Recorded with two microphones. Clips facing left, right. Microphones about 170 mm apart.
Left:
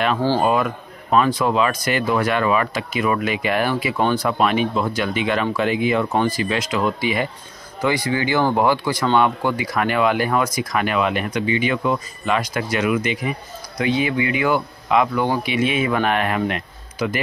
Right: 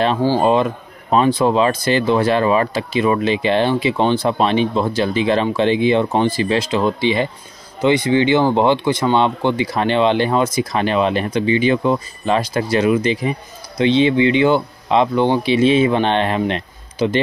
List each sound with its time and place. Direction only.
0.4 s speech: 25° right (ahead or behind)